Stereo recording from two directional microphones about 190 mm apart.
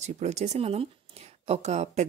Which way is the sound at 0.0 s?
35° right (ahead or behind).